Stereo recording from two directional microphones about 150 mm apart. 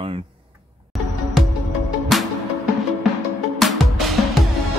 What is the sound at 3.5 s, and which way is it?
Music, centre (ahead or behind).